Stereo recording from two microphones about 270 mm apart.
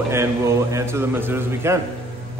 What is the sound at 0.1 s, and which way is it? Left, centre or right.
Speech, centre.